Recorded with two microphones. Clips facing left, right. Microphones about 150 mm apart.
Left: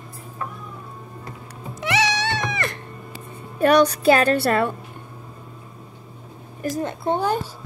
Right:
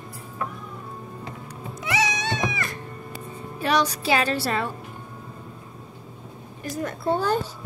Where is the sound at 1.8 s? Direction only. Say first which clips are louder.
Left 4 dB; 75° left (ahead or behind).